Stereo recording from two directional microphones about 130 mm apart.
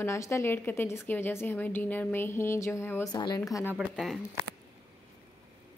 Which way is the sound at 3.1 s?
30° left (ahead or behind).